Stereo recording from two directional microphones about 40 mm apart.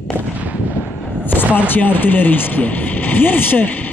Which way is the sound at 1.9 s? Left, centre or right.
Left.